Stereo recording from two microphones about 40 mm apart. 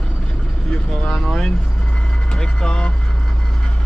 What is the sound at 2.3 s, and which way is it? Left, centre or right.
Speech, left.